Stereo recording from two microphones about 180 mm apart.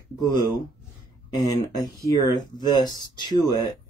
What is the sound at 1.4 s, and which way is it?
Speech, 20° left (ahead or behind).